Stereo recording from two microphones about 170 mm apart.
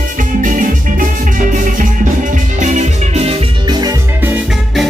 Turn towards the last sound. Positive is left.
turn(degrees=-10)  # may be behind; listen again after turning